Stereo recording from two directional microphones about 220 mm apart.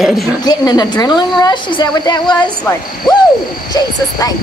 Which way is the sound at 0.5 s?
20° left (ahead or behind).